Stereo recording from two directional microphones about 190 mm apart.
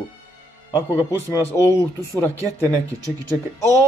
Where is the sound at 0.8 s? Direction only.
10° left (ahead or behind).